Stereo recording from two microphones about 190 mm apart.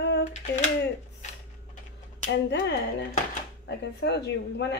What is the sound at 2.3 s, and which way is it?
Speech, 70° left (ahead or behind).